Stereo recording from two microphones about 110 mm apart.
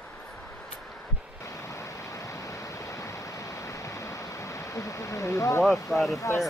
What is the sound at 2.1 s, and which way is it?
Vehicle, 30° left (ahead or behind).